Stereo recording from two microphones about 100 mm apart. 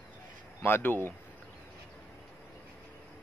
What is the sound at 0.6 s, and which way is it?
Speech, 25° left (ahead or behind).